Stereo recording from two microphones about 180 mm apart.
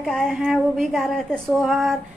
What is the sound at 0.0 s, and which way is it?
Speech, centre (ahead or behind).